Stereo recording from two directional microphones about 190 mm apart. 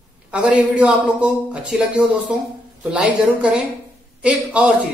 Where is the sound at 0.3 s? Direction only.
5° right (ahead or behind).